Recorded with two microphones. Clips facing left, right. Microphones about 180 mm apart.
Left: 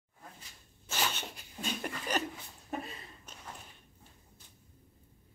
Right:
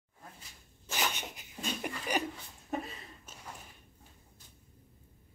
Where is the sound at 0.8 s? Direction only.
15° right (ahead or behind).